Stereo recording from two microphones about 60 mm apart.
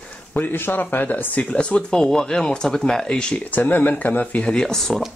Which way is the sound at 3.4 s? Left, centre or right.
Left.